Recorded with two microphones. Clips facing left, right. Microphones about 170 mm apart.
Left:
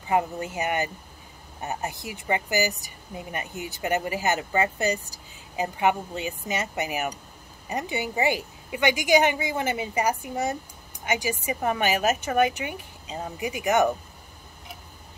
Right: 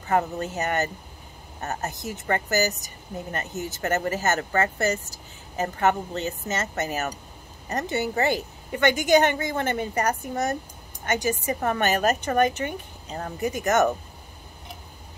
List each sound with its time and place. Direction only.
0.0 s speech: 10° left (ahead or behind)